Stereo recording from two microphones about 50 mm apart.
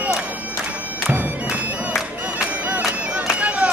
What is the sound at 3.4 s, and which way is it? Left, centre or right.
Music, right.